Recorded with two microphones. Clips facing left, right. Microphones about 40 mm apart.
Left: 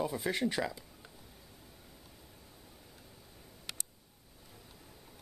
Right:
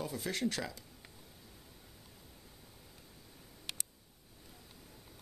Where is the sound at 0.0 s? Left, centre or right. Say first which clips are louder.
Left 4 dB; centre.